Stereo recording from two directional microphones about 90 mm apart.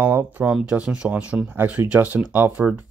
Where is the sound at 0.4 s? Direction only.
10° right (ahead or behind).